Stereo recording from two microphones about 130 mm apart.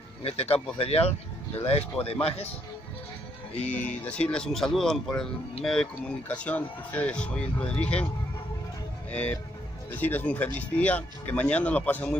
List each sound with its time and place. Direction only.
0.2 s speech: 50° left (ahead or behind)
3.6 s speech: 10° left (ahead or behind)
9.1 s speech: 10° left (ahead or behind)